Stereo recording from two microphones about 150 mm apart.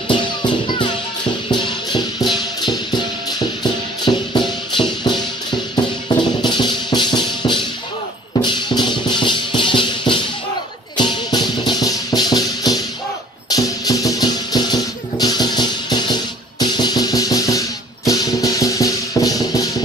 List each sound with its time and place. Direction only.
0.1 s music: 30° left (ahead or behind)
4.0 s music: 30° left (ahead or behind)
6.4 s music: 30° left (ahead or behind)